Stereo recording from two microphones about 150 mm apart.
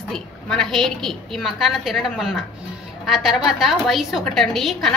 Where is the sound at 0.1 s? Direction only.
5° left (ahead or behind).